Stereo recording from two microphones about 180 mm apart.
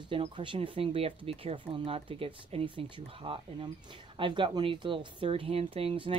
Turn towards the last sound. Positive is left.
turn(degrees=-30)  # may be behind; listen again after turning